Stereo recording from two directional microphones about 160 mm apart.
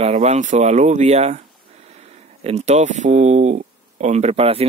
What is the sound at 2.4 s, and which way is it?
Speech, 40° right (ahead or behind).